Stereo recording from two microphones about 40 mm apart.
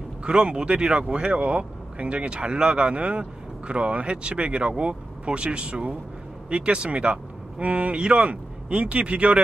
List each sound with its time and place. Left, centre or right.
0.2 s speech: right